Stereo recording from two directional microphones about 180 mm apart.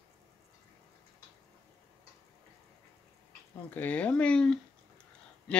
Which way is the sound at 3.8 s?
10° left (ahead or behind).